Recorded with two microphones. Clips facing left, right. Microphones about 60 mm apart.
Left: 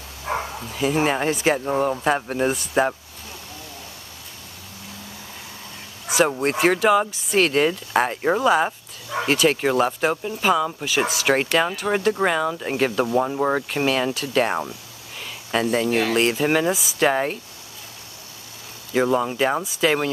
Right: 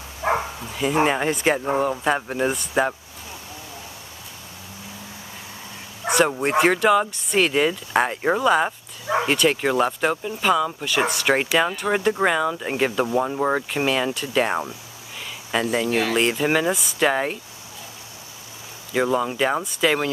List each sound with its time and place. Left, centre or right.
0.2 s a sound: right
0.7 s speech: centre
6.1 s speech: centre
12.3 s speech: centre
18.9 s speech: centre